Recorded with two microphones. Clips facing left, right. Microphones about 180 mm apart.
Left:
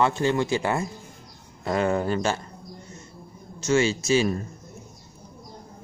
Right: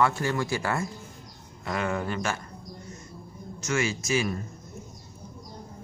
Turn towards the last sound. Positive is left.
turn(degrees=30)  # may be behind; listen again after turning